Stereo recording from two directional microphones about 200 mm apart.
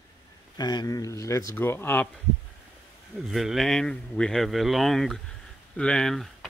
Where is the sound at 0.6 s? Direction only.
20° left (ahead or behind).